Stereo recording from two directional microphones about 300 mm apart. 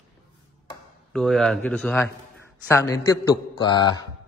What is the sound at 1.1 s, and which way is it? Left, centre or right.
A man's voice, centre.